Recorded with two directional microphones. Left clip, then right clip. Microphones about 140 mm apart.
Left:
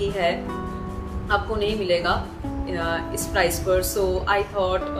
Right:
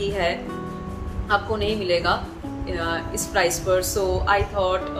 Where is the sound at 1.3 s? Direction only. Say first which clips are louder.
Right 1 dB; 15° right (ahead or behind).